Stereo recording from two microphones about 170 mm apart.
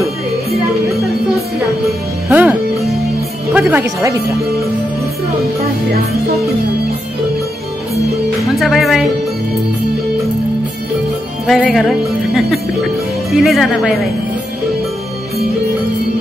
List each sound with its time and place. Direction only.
2.2 s music: 5° right (ahead or behind)
3.5 s speech: 15° right (ahead or behind)
7.9 s music: centre (ahead or behind)
11.4 s speech: centre (ahead or behind)
13.3 s speech: centre (ahead or behind)